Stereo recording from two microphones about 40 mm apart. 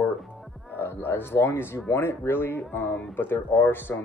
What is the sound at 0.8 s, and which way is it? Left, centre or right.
A man's voice, left.